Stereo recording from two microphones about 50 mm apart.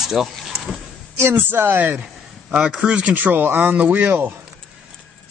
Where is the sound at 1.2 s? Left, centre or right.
Right.